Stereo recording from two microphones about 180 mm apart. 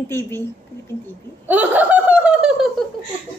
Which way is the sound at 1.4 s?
10° right (ahead or behind).